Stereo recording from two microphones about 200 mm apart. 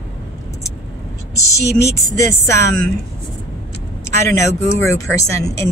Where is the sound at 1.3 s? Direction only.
15° left (ahead or behind).